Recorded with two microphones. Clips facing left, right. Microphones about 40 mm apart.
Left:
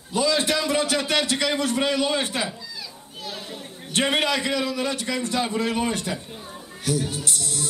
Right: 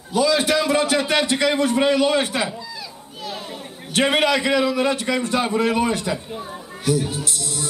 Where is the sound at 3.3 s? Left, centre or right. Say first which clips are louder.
Right 4 dB; centre.